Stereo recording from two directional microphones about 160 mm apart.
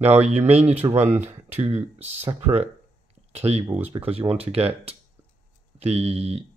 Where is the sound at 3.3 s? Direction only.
40° right (ahead or behind).